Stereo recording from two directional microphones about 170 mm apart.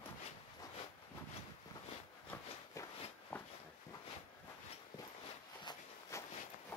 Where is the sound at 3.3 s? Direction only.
10° left (ahead or behind).